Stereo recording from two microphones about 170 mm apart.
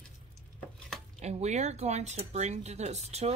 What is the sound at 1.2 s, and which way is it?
Speech, 40° right (ahead or behind).